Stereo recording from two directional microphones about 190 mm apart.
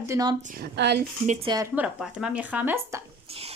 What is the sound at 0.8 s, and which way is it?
Speech, 65° right (ahead or behind).